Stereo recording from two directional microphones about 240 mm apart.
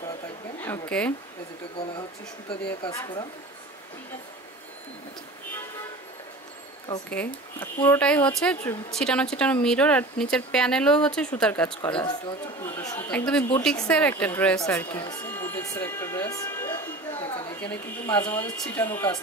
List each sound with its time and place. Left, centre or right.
0.6 s speech: centre
2.8 s speech: centre
6.9 s speech: centre